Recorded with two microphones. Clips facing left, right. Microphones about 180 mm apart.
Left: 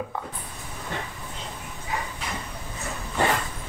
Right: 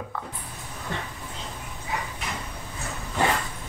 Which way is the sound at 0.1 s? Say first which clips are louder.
Left 2 dB; 15° left (ahead or behind).